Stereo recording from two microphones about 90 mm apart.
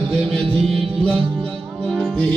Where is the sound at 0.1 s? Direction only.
10° left (ahead or behind).